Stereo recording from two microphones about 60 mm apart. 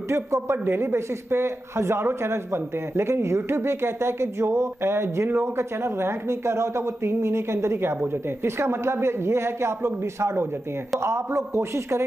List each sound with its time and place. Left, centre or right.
0.1 s a man's voice: right